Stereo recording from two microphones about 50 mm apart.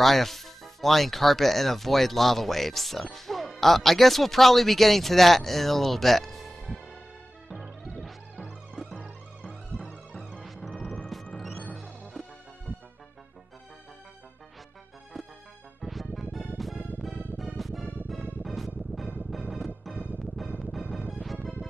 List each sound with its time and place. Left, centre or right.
0.0 s speech: centre
8.8 s music: centre
9.4 s music: right
11.1 s music: centre
15.8 s music: centre